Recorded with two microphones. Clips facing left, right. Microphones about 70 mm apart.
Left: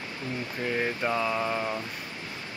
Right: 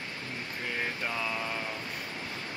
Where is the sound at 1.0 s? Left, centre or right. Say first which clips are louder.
Left 6 dB; centre.